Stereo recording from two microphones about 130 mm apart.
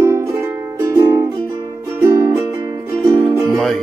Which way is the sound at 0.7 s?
25° right (ahead or behind).